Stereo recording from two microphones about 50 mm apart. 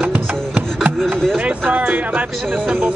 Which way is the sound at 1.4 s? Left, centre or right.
Right.